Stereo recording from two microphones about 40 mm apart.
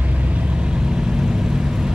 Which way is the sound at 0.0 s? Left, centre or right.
Right.